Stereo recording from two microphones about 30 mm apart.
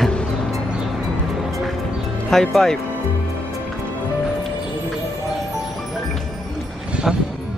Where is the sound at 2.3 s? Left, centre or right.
Centre.